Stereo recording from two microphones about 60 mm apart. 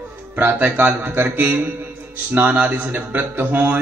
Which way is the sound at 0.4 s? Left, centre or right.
Right.